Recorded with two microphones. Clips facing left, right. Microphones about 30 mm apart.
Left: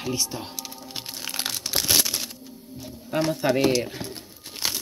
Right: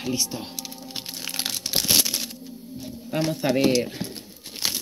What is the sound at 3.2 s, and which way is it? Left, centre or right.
Speech, right.